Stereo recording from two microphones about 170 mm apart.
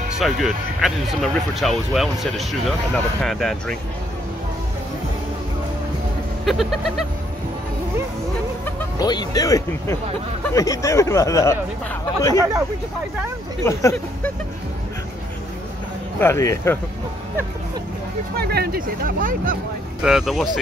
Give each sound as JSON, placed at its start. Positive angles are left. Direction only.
{"t": 0.2, "sound": "speech", "side_deg": 0}
{"t": 6.4, "sound": "speech", "side_deg": 0}
{"t": 8.6, "sound": "music", "side_deg": 10}
{"t": 9.0, "sound": "speech", "side_deg": 25}
{"t": 13.7, "sound": "speech", "side_deg": 15}
{"t": 16.2, "sound": "speech", "side_deg": 15}
{"t": 18.3, "sound": "speech", "side_deg": -65}
{"t": 20.0, "sound": "speech", "side_deg": -5}